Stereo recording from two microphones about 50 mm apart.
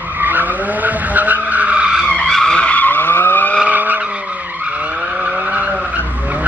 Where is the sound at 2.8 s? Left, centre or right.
Left.